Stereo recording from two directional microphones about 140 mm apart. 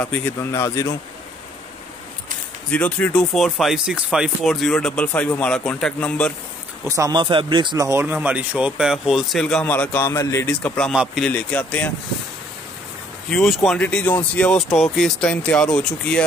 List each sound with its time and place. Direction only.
0.0 s speech: 10° left (ahead or behind)
2.7 s speech: 5° left (ahead or behind)
7.0 s a man's voice: 30° right (ahead or behind); by 10.5 s 20° left (ahead or behind)
10.6 s speech: 5° left (ahead or behind)
13.3 s speech: centre (ahead or behind)